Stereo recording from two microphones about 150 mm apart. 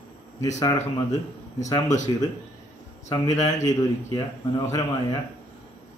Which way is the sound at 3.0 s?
20° left (ahead or behind).